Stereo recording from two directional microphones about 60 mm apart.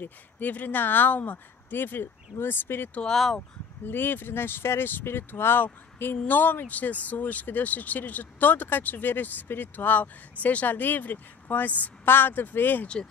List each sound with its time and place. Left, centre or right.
0.0 s speech: left
3.1 s speech: centre
3.8 s speech: left
12.8 s speech: centre